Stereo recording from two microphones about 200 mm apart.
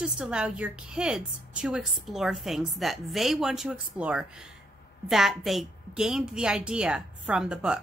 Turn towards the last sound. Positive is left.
turn(degrees=-5)  # may be behind; listen again after turning